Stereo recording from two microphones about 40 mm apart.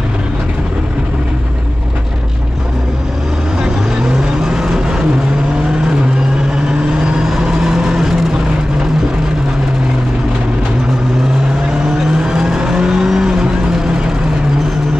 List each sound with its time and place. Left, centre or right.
4.5 s vehicle: centre
7.2 s vehicle: centre
12.2 s vehicle: centre